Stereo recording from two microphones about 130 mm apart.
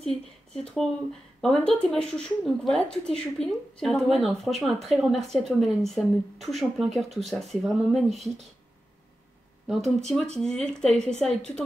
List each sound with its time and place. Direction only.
0.0 s speech: 5° left (ahead or behind)
9.7 s speech: centre (ahead or behind)